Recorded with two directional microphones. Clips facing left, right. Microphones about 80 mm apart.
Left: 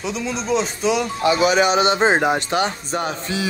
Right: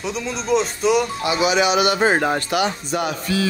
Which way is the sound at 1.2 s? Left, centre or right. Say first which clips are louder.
Left 4 dB; left.